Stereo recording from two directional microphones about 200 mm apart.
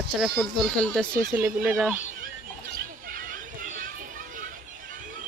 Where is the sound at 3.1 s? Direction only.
45° right (ahead or behind).